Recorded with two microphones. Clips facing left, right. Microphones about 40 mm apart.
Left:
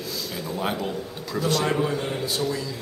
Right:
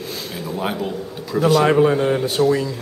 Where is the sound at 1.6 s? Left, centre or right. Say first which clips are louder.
Right 9 dB; right.